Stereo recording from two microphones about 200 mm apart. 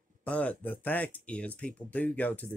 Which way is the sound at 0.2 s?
10° left (ahead or behind).